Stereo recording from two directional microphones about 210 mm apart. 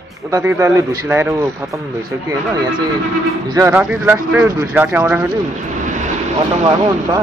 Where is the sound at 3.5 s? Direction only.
10° right (ahead or behind).